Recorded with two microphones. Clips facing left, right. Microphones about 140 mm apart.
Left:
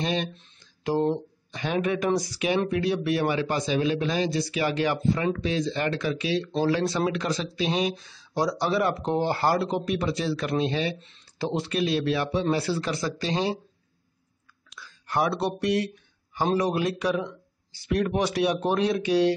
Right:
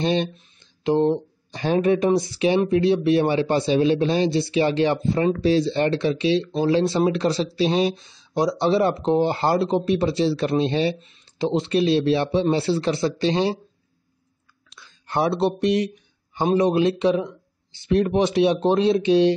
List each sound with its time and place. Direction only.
0.0 s speech: 30° right (ahead or behind)
1.5 s speech: 35° right (ahead or behind)
11.0 s speech: 15° right (ahead or behind)
14.7 s speech: 25° right (ahead or behind)